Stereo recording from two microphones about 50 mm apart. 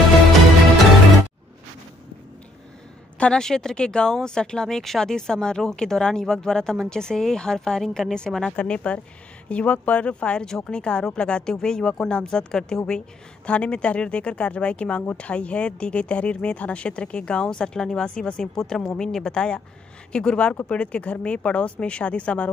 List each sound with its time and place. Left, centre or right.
3.2 s a woman's voice: centre